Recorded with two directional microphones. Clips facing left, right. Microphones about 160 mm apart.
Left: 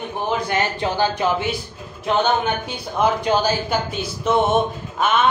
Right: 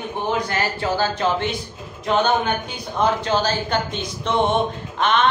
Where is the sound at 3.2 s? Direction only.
10° left (ahead or behind).